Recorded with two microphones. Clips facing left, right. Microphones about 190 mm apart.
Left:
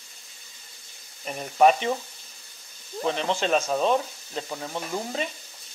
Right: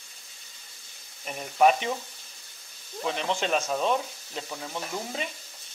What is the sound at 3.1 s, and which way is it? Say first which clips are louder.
Speech: left 3 dB; 35° left (ahead or behind).